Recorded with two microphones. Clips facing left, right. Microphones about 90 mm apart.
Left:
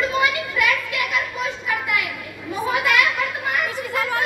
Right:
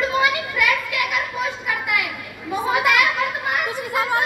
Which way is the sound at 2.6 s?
20° right (ahead or behind).